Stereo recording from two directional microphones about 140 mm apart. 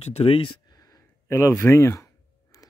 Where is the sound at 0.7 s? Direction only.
25° left (ahead or behind).